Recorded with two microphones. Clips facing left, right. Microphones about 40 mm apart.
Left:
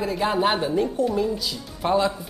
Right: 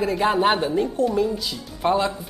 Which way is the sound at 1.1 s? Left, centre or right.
Right.